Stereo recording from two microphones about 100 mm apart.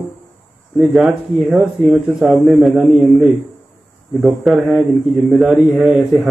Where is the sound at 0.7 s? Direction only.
Centre (ahead or behind).